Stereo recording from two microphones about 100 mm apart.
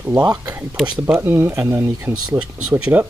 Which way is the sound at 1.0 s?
20° right (ahead or behind).